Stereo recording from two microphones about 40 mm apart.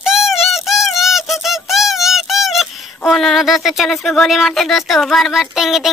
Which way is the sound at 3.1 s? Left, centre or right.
Centre.